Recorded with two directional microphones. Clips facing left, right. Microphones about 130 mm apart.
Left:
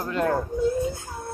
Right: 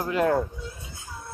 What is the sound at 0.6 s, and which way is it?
Baby cry, 45° left (ahead or behind).